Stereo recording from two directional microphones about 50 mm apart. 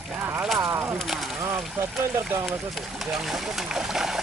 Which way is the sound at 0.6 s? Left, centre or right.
Right.